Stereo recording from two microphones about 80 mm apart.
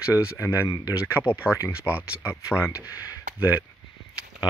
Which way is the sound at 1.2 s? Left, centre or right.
Centre.